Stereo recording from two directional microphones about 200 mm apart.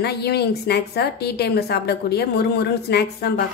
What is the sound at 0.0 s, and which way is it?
A woman's voice, 55° left (ahead or behind).